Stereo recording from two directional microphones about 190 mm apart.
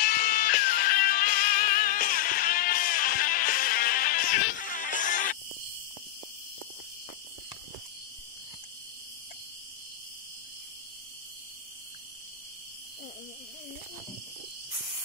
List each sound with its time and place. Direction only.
0.0 s music: 50° left (ahead or behind)